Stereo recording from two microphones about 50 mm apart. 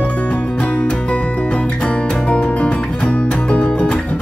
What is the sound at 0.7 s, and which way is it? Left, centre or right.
Music, left.